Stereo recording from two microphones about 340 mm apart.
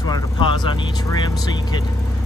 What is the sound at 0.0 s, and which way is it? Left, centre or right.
Vehicle, centre.